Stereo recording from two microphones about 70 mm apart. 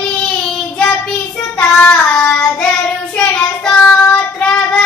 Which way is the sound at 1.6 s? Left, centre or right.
Centre.